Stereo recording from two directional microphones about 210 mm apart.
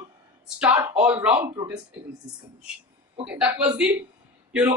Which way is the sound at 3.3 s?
5° right (ahead or behind).